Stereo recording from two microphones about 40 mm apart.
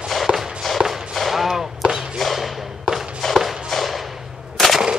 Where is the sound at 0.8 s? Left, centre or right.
Centre.